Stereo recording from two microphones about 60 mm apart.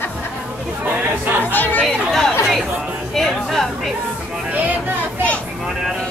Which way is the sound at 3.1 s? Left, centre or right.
Centre.